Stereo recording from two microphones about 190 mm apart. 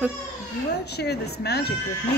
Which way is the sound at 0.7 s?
60° left (ahead or behind).